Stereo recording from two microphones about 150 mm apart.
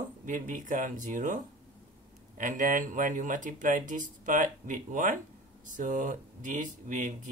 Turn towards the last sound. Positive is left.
turn(degrees=-60)  # may be behind; listen again after turning